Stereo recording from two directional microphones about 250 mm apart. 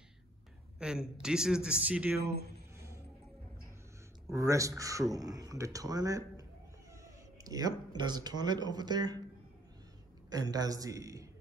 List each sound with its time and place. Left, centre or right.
0.7 s a man's voice: centre
2.1 s speech: right
4.3 s speech: centre
7.4 s speech: centre
10.3 s speech: centre